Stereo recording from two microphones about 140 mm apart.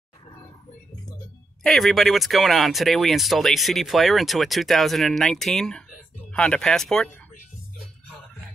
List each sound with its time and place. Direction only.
1.6 s speech: centre (ahead or behind)